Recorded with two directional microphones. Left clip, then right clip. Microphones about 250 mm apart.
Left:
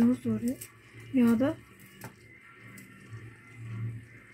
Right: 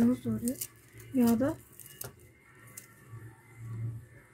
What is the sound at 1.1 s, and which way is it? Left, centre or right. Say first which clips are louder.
Speech: left 2 dB; centre.